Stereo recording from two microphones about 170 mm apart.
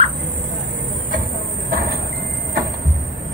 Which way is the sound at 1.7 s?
60° right (ahead or behind).